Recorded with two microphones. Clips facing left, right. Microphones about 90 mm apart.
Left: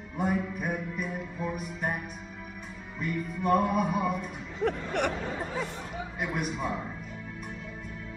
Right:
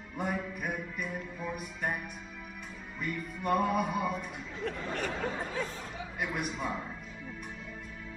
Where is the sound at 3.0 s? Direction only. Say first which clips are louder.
Left 5 dB; 5° left (ahead or behind).